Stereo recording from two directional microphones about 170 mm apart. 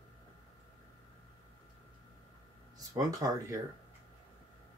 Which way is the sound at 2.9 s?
20° right (ahead or behind).